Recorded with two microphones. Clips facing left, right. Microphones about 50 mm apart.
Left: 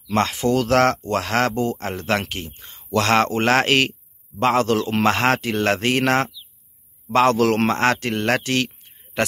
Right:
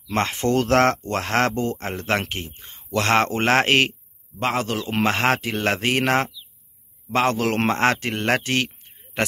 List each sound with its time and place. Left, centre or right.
0.1 s a man's voice: right